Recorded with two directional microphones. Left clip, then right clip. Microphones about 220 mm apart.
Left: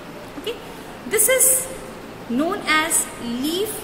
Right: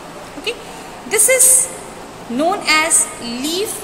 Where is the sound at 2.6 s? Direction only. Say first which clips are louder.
Right 4 dB; 15° left (ahead or behind).